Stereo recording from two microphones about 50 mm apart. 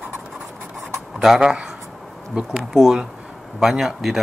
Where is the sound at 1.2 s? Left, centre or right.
Centre.